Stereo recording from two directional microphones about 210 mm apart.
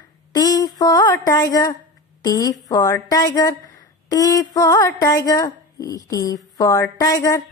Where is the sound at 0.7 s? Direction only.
15° left (ahead or behind).